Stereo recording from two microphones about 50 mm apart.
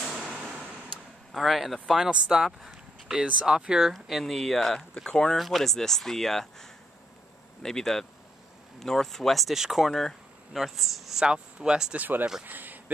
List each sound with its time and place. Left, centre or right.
0.2 s a sound: centre
1.3 s speech: centre
2.0 s speech: centre
3.8 s speech: centre
5.4 s speech: centre
11.2 s speech: centre
12.0 s speech: right
12.4 s a sound: right